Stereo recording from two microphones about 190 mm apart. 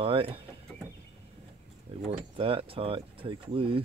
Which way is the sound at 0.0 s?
30° right (ahead or behind).